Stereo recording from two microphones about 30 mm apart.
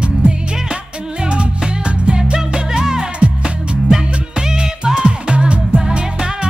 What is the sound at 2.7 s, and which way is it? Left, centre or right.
Music, right.